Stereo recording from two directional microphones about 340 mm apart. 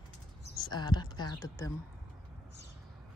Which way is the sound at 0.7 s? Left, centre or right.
Centre.